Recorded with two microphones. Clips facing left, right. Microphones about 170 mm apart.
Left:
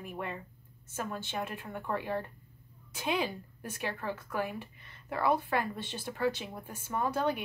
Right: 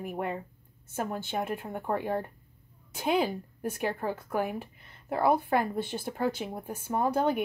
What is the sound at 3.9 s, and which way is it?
Speech, 45° right (ahead or behind).